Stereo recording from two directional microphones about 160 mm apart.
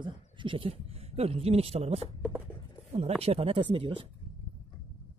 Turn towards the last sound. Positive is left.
turn(degrees=-35)  # may be behind; listen again after turning